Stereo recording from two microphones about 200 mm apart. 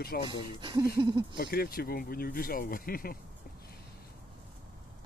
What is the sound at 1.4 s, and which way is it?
Speech, 50° left (ahead or behind).